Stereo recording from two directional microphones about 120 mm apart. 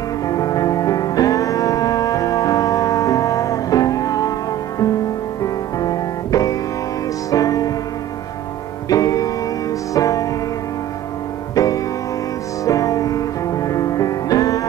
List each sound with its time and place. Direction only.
0.3 s music: 30° left (ahead or behind)
5.4 s music: 30° left (ahead or behind)
8.8 s music: 30° left (ahead or behind)
11.5 s music: 30° left (ahead or behind)